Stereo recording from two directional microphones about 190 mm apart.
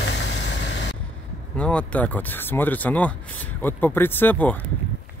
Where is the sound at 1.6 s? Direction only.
5° left (ahead or behind).